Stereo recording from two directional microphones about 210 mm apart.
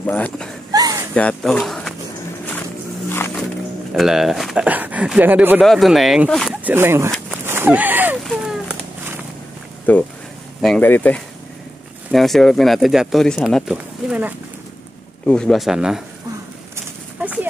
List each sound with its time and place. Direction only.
0.0 s speech: 5° left (ahead or behind)
0.7 s a sound: 15° right (ahead or behind)
1.1 s speech: 5° left (ahead or behind)
3.9 s speech: centre (ahead or behind)
6.7 s speech: 10° right (ahead or behind)
7.1 s a sound: 10° right (ahead or behind)
8.3 s cat: 5° right (ahead or behind)
9.9 s speech: 5° left (ahead or behind)
16.7 s a sound: 10° right (ahead or behind)